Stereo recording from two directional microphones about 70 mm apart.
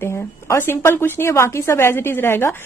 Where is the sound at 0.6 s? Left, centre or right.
Left.